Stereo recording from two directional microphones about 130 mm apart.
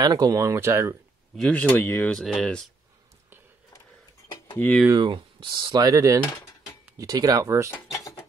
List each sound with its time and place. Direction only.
0.0 s speech: 30° right (ahead or behind)
1.5 s speech: 10° left (ahead or behind)
2.1 s speech: 5° left (ahead or behind)
4.6 s speech: 10° left (ahead or behind)
4.9 s speech: 35° right (ahead or behind)
7.7 s dishes: 25° left (ahead or behind)